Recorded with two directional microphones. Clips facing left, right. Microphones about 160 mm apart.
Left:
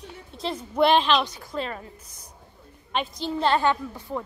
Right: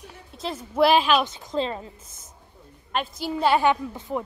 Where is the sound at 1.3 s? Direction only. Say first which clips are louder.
Right 4 dB; 25° right (ahead or behind).